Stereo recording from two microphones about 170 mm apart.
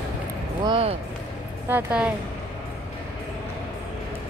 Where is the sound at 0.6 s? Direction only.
30° right (ahead or behind).